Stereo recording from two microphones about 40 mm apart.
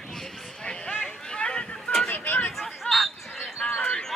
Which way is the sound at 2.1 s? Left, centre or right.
Left.